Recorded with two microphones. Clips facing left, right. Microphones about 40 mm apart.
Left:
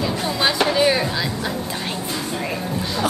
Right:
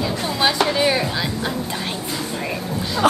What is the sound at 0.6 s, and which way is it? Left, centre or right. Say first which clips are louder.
Speech: left 1 dB; centre.